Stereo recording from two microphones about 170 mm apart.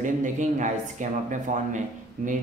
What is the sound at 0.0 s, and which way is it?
Speech, 50° right (ahead or behind).